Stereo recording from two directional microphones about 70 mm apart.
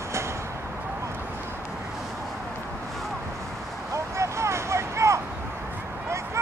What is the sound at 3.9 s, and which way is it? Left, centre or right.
Vehicle, right.